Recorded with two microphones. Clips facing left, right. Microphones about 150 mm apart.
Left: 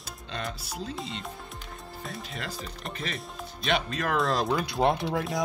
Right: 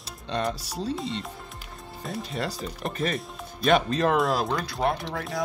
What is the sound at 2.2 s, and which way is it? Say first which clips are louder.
Speech: right 10 dB; 35° right (ahead or behind).